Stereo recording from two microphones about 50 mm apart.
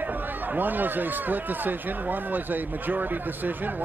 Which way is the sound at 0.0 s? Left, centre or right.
Right.